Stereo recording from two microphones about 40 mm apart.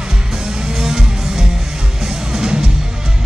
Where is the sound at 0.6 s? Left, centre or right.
Centre.